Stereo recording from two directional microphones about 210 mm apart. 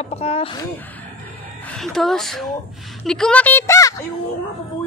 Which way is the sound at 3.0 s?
5° left (ahead or behind).